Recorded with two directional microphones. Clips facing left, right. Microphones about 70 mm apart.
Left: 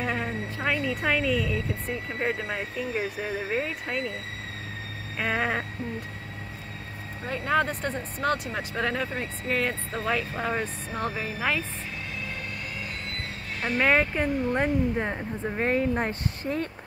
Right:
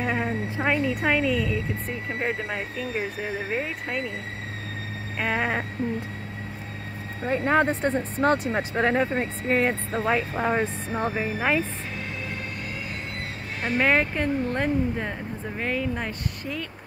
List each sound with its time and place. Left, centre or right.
0.0 s speech: centre
5.2 s speech: centre
7.2 s speech: right
13.6 s speech: centre
14.1 s speech: centre
15.6 s speech: left